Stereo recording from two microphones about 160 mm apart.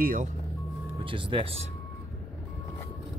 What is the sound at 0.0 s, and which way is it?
Speech, 60° right (ahead or behind).